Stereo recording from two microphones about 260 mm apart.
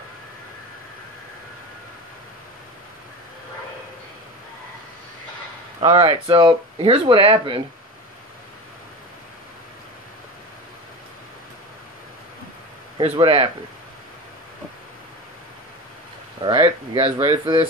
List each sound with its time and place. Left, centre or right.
5.8 s speech: right
12.9 s speech: right
16.3 s speech: centre